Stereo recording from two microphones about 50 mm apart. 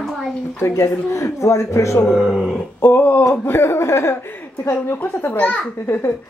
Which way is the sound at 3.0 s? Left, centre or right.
Left.